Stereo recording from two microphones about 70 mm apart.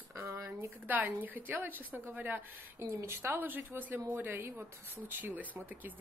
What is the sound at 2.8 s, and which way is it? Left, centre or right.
A woman's voice, right.